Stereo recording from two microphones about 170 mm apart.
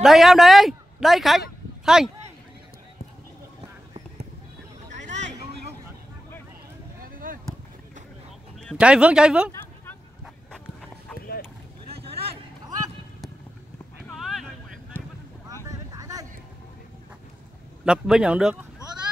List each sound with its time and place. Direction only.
0.0 s speech: centre (ahead or behind)
4.9 s vehicle: 45° right (ahead or behind)
7.0 s a sound: 55° right (ahead or behind)
8.7 s speech: 5° right (ahead or behind)
11.1 s a sound: 60° left (ahead or behind)
14.1 s a sound: centre (ahead or behind)
14.9 s boat: 15° right (ahead or behind)
15.9 s vehicle: 20° right (ahead or behind)
17.8 s speech: 5° right (ahead or behind)